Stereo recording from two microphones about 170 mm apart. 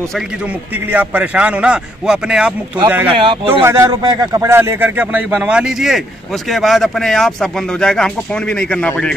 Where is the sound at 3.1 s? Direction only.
30° right (ahead or behind).